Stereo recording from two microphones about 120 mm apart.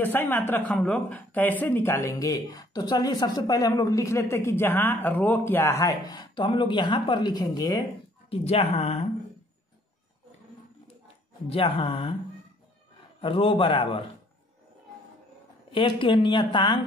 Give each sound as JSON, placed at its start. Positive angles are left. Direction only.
{"t": 0.0, "sound": "speech", "side_deg": 15}
{"t": 8.3, "sound": "a woman's voice", "side_deg": 55}
{"t": 11.4, "sound": "a woman's voice", "side_deg": 50}
{"t": 13.2, "sound": "a woman's voice", "side_deg": 50}
{"t": 15.7, "sound": "a woman's voice", "side_deg": 45}